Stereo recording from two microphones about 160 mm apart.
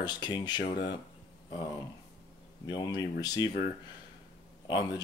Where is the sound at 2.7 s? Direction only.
25° left (ahead or behind).